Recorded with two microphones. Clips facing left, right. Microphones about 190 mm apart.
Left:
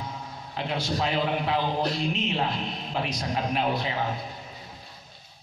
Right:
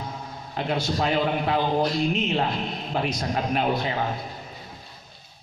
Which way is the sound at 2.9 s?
45° right (ahead or behind).